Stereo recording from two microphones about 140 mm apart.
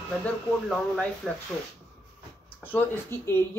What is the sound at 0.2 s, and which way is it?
Speech, 5° left (ahead or behind).